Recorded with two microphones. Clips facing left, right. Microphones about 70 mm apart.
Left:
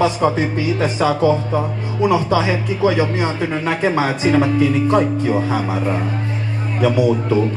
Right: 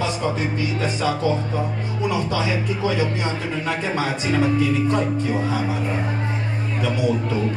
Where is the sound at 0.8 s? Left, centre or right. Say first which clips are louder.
Left 7 dB; left.